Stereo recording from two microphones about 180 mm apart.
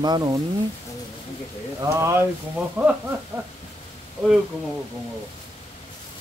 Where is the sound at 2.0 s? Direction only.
15° right (ahead or behind).